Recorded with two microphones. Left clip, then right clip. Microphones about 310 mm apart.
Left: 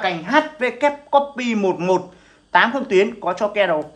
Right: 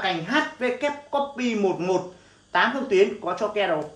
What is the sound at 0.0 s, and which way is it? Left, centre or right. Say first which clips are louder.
Speech: left 6 dB; centre.